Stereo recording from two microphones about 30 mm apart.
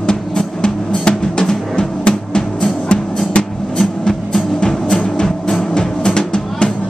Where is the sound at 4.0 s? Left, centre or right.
Centre.